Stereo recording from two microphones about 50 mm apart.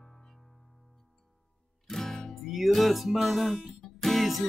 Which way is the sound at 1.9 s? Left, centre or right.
Centre.